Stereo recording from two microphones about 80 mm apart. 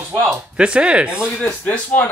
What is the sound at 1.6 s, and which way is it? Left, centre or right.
Speech, left.